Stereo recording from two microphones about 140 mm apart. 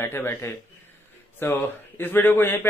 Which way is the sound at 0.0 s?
15° left (ahead or behind).